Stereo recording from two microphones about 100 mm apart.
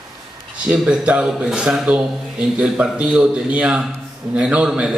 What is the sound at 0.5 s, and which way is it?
A man's voice, 10° right (ahead or behind).